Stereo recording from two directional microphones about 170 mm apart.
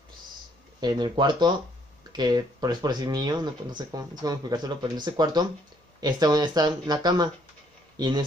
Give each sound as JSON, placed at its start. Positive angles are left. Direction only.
{"t": 0.7, "sound": "speech", "side_deg": -25}